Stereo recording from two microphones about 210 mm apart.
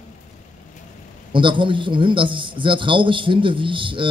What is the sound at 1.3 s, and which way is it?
A man's voice, 25° right (ahead or behind).